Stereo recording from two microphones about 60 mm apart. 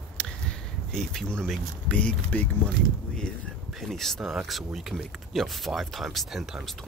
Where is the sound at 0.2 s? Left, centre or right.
Centre.